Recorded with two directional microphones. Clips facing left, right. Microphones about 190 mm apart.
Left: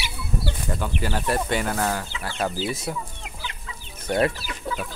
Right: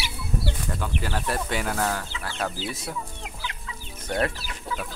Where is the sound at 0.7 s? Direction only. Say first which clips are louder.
Left 5 dB; 5° left (ahead or behind).